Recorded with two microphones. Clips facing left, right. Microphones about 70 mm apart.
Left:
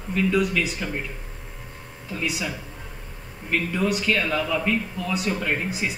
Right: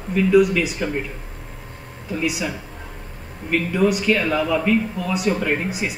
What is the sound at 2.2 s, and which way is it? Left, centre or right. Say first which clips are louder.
Speech: right 4 dB; centre.